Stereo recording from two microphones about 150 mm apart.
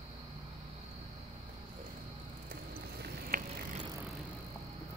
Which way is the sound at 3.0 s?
70° right (ahead or behind).